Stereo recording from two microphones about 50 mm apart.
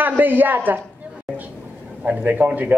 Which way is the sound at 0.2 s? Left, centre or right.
Right.